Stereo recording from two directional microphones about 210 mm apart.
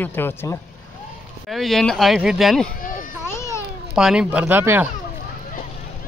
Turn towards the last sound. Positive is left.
turn(degrees=-10)  # may be behind; listen again after turning